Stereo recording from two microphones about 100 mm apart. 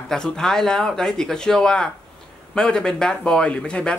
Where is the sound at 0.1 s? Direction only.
5° left (ahead or behind).